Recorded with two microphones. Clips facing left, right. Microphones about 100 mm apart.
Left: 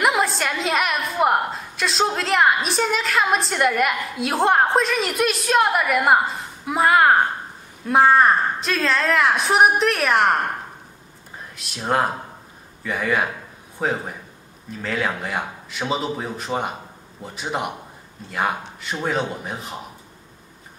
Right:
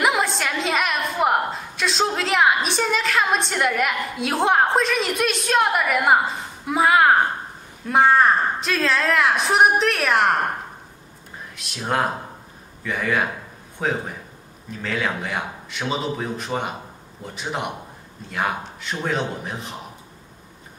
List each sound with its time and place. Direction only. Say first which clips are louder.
0.0 s a woman's voice: left 1 dB; centre (ahead or behind)